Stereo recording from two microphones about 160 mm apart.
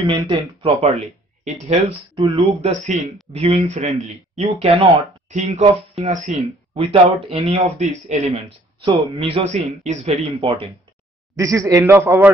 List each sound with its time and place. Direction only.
0.0 s speech: 30° right (ahead or behind)
2.6 s speech: 45° right (ahead or behind)
11.3 s a man's voice: 20° right (ahead or behind)